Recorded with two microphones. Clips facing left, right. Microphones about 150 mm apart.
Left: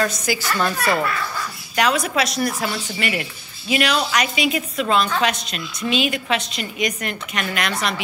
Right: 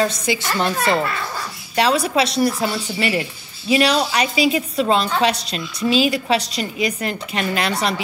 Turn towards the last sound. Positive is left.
turn(degrees=-35)  # may be behind; listen again after turning